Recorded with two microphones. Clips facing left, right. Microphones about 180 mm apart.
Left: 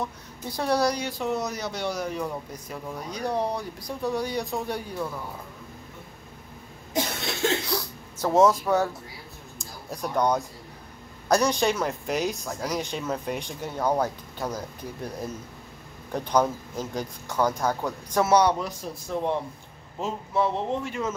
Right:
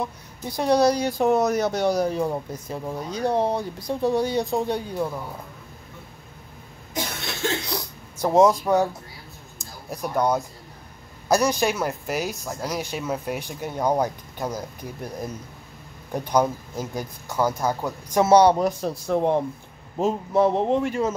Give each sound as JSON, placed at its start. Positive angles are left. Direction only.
{"t": 0.0, "sound": "speech", "side_deg": -15}
{"t": 0.9, "sound": "speech", "side_deg": -45}
{"t": 7.7, "sound": "speech", "side_deg": -15}
{"t": 18.2, "sound": "speech", "side_deg": -30}
{"t": 18.8, "sound": "speech", "side_deg": -65}
{"t": 20.0, "sound": "speech", "side_deg": -45}